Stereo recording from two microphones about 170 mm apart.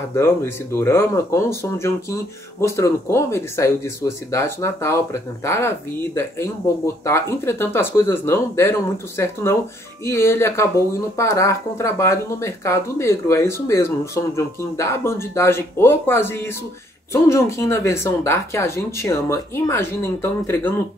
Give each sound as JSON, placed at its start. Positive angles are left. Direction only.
{"t": 0.1, "sound": "speech", "side_deg": 15}